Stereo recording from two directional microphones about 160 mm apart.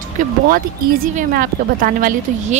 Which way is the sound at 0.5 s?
65° right (ahead or behind).